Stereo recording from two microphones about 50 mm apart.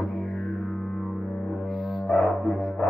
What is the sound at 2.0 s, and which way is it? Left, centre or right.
Music, left.